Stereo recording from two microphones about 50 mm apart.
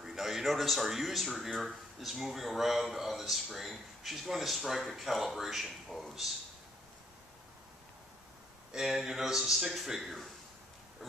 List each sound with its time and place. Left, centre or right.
0.0 s a man's voice: centre
8.7 s a man's voice: centre